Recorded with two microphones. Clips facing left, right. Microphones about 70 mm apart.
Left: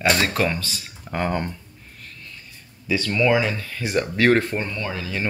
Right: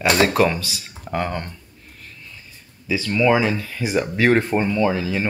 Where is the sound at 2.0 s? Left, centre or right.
Centre.